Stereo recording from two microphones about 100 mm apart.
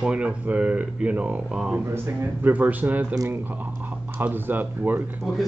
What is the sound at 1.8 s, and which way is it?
Speech, 25° right (ahead or behind).